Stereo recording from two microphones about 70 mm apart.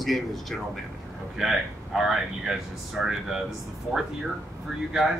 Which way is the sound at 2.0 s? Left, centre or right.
Centre.